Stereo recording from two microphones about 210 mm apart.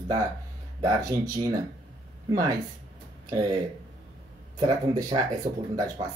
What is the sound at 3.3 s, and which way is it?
Speech, 20° right (ahead or behind).